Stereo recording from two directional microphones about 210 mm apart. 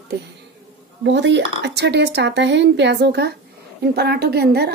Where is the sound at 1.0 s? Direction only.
55° right (ahead or behind).